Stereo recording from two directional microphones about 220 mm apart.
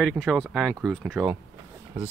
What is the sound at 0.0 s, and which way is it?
Speech, centre (ahead or behind).